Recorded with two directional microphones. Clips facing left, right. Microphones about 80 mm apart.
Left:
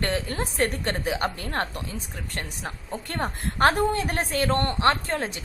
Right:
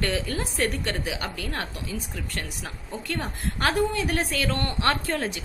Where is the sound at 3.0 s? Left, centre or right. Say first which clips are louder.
Left 1 dB; left.